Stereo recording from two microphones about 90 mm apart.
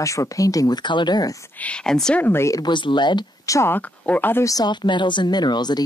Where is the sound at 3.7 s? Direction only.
20° left (ahead or behind).